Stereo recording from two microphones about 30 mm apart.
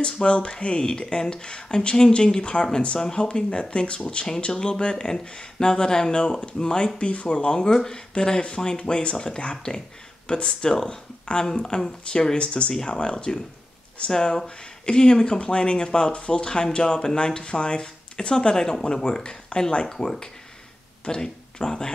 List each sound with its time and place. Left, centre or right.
0.2 s speech: left
7.0 s speech: left
12.4 s speech: left
12.7 s speech: left
18.5 s speech: left
19.5 s speech: left
20.0 s speech: left
21.5 s speech: left